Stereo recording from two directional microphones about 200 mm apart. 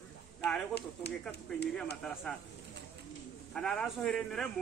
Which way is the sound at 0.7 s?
55° left (ahead or behind).